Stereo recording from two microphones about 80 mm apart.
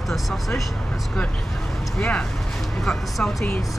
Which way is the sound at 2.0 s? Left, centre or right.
Centre.